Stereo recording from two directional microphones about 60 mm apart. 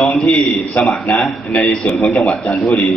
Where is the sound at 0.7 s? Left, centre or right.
Left.